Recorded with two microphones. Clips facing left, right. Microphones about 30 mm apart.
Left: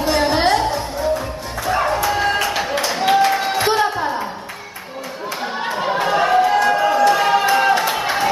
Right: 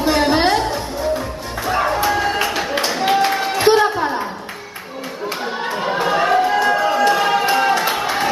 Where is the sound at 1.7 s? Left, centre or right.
Centre.